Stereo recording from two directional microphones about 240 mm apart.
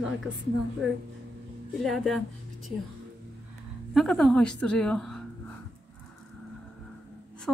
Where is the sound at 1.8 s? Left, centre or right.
Centre.